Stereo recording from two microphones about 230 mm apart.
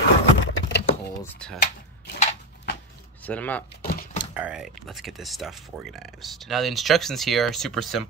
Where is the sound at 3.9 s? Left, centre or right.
Left.